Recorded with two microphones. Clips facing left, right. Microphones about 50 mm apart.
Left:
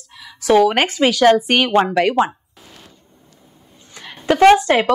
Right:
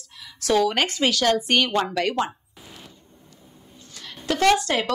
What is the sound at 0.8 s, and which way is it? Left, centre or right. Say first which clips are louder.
Speech: left 6 dB; centre.